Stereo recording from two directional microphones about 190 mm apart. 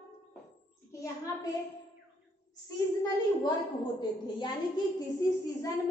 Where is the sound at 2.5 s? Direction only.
20° left (ahead or behind).